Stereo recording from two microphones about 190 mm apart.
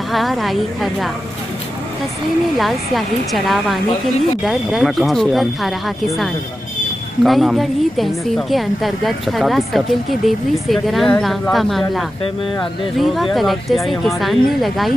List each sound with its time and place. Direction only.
0.1 s a woman's voice: centre (ahead or behind)
2.5 s a woman's voice: centre (ahead or behind)
7.2 s a woman's voice: centre (ahead or behind)